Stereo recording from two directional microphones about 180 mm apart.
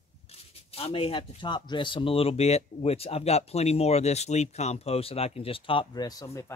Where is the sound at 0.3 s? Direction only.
35° left (ahead or behind).